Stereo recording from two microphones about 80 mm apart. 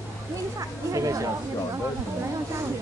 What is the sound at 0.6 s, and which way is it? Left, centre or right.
Speech, right.